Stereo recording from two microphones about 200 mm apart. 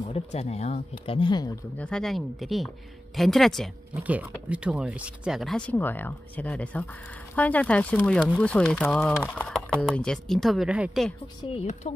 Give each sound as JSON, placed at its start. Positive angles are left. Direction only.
{"t": 0.0, "sound": "speech", "side_deg": 30}
{"t": 1.8, "sound": "speech", "side_deg": 5}
{"t": 11.5, "sound": "speech", "side_deg": 35}